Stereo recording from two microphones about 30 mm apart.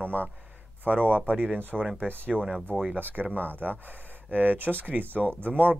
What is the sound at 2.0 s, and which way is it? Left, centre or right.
Speech, left.